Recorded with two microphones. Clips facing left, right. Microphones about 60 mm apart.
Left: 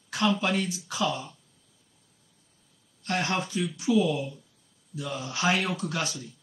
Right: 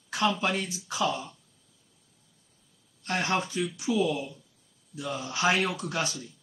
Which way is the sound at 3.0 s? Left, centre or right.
Right.